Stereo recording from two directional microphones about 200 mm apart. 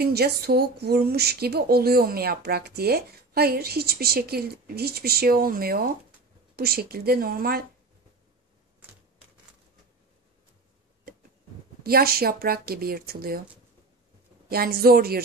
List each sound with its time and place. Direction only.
0.0 s speech: 50° right (ahead or behind)
11.8 s speech: 50° right (ahead or behind)
14.5 s speech: 50° right (ahead or behind)